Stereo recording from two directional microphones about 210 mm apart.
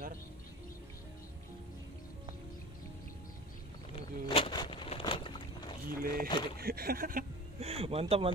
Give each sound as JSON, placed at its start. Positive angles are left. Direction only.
{"t": 3.9, "sound": "a sound", "side_deg": 25}
{"t": 5.9, "sound": "speech", "side_deg": -45}
{"t": 6.2, "sound": "speech", "side_deg": 20}
{"t": 6.6, "sound": "speech", "side_deg": -45}